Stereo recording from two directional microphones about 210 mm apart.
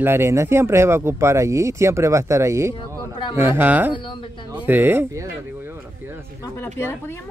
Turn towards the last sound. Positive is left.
turn(degrees=10)  # may be behind; listen again after turning